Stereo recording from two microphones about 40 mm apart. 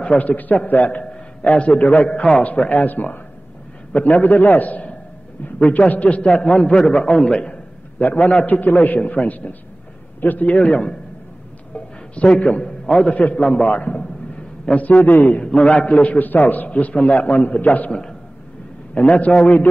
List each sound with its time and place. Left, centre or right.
0.1 s a man's voice: left
2.0 s a man's voice: left
2.4 s a man's voice: left
2.8 s a man's voice: left
6.7 s a man's voice: centre; by 8.5 s left
8.5 s a man's voice: left
11.7 s music: left
12.5 s a man's voice: left
14.3 s a sound: left
15.0 s a man's voice: left
15.4 s a man's voice: left
18.9 s a man's voice: left